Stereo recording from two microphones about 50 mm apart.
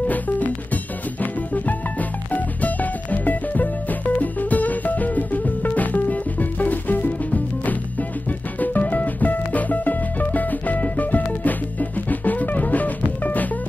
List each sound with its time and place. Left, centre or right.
1.2 s music: left
8.5 s music: left